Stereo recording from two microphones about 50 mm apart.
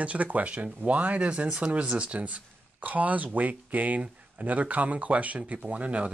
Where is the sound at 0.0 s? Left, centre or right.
Right.